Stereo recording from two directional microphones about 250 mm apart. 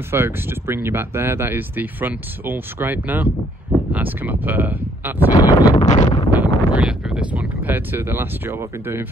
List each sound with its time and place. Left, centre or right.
0.1 s speech: centre
5.3 s a sound: centre
5.8 s wind noise: left
6.3 s speech: centre